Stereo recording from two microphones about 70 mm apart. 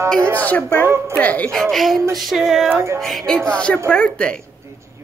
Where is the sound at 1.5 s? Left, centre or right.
Centre.